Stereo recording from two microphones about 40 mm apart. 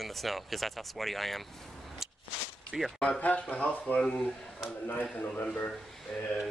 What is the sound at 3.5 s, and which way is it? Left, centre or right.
Speech, left.